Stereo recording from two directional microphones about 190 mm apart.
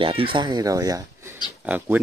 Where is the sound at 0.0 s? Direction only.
30° right (ahead or behind).